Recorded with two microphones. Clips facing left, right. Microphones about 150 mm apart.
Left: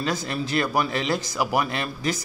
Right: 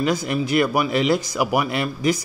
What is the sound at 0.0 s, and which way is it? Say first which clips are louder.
Speech: right 5 dB; 15° right (ahead or behind).